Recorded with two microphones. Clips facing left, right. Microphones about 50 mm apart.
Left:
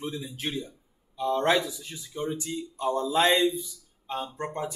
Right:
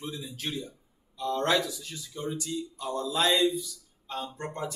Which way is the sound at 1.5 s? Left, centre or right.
Centre.